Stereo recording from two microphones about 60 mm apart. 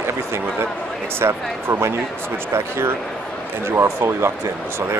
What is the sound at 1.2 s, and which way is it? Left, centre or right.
Speech, right.